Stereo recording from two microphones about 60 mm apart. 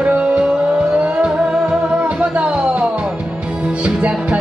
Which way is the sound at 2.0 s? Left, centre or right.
Centre.